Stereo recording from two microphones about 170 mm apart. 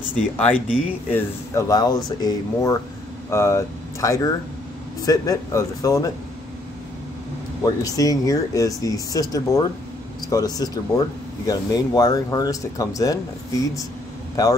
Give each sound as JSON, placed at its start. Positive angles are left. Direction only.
{"t": 0.1, "sound": "speech", "side_deg": 5}
{"t": 1.1, "sound": "speech", "side_deg": 20}
{"t": 7.6, "sound": "a man's voice", "side_deg": 20}